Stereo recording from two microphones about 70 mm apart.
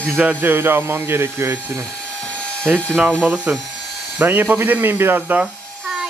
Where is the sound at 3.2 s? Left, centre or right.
Centre.